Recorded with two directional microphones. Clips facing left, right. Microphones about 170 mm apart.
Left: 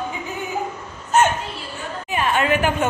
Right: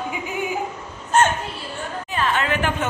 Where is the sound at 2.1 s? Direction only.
10° left (ahead or behind).